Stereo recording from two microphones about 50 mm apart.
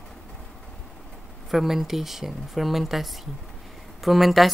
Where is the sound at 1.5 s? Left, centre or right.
Centre.